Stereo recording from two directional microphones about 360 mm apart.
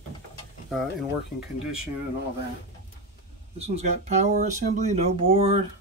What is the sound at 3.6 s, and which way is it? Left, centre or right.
Speech, centre.